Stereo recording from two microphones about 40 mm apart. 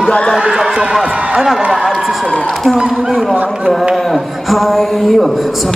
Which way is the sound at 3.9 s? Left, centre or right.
Centre.